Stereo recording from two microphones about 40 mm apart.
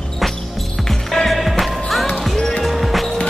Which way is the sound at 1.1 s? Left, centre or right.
Centre.